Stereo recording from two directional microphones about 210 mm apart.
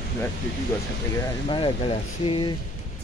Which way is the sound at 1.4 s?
25° left (ahead or behind).